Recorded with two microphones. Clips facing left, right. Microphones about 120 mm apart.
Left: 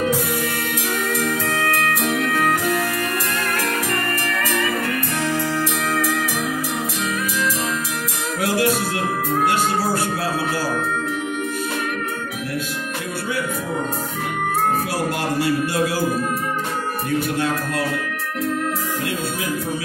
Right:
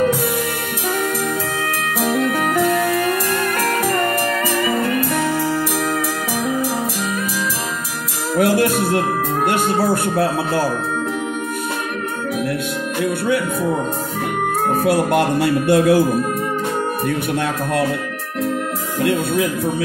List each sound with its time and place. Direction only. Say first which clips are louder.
2.2 s music: right 1 dB; 20° right (ahead or behind)
8.4 s music: right 5 dB; 55° right (ahead or behind)
14.9 s speech: right 7 dB; 60° right (ahead or behind)